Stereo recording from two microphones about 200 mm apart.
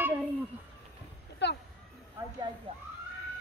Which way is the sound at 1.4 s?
55° left (ahead or behind).